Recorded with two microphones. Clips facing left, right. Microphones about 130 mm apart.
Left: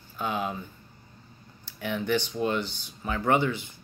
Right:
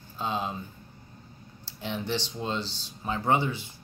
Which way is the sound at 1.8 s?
25° right (ahead or behind).